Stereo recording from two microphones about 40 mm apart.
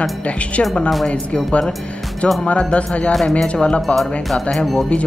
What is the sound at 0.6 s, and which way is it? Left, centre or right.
Speech, left.